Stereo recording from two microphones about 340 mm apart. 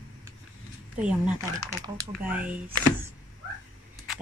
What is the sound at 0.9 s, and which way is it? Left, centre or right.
Speech, centre.